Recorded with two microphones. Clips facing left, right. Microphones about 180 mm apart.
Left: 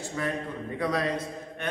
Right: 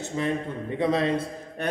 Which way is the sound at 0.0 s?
20° right (ahead or behind).